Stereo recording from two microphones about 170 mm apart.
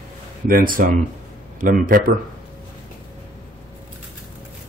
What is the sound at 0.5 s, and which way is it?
Speech, 55° right (ahead or behind).